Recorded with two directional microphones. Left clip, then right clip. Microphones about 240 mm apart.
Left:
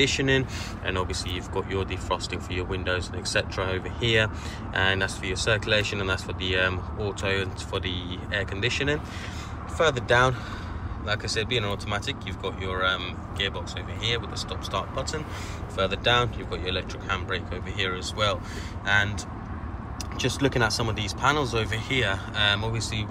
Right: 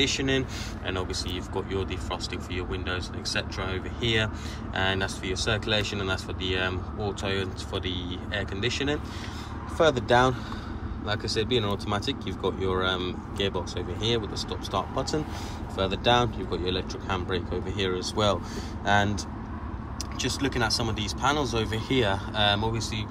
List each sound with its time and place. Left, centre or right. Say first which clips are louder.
0.0 s speech: left 3 dB; centre
20.2 s speech: left 3 dB; centre